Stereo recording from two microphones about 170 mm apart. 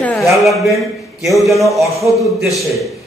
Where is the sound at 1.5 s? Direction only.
Centre (ahead or behind).